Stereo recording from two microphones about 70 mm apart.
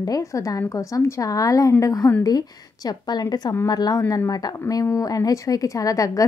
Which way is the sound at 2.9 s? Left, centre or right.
Left.